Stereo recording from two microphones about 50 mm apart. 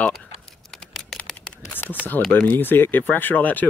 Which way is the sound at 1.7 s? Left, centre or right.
Left.